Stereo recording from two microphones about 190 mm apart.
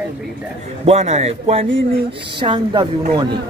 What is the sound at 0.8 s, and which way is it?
Speech, 35° right (ahead or behind).